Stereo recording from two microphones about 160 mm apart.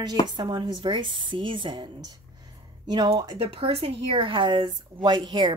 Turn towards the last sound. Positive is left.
turn(degrees=-30)  # may be behind; listen again after turning